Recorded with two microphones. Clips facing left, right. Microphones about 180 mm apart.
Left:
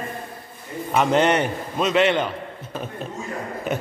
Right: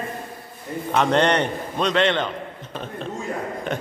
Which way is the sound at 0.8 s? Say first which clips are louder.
Left 1 dB; 5° left (ahead or behind).